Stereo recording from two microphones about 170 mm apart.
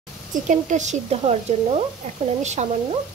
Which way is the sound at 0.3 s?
45° right (ahead or behind).